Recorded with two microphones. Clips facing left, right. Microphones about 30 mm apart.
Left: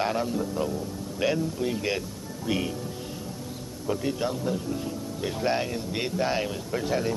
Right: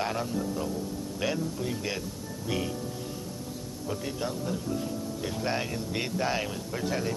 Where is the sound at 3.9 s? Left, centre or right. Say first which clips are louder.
Left 6 dB; centre.